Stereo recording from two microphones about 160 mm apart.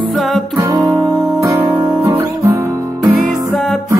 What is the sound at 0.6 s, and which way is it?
Music, 20° right (ahead or behind).